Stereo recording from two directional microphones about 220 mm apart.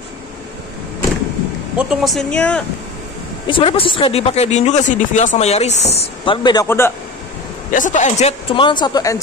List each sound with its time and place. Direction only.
1.8 s speech: centre (ahead or behind)
3.4 s speech: 25° left (ahead or behind)
7.7 s speech: 35° left (ahead or behind); by 9.2 s 15° left (ahead or behind)